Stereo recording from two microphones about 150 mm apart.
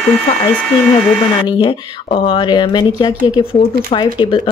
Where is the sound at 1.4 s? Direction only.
35° left (ahead or behind).